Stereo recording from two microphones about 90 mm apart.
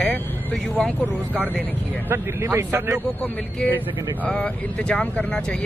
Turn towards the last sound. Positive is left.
turn(degrees=10)  # may be behind; listen again after turning